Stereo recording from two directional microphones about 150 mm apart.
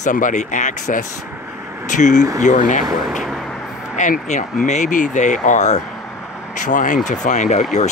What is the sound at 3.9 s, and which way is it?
Speech, 55° left (ahead or behind).